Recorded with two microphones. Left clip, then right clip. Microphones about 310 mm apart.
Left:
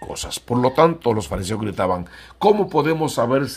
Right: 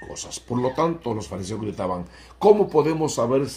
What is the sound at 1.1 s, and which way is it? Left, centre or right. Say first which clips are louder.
Speech: left 6 dB; left.